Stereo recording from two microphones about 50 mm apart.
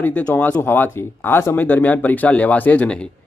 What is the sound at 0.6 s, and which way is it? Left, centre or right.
Speech, left.